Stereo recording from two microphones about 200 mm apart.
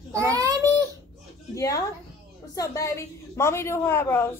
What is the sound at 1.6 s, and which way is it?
A woman's voice, 15° left (ahead or behind).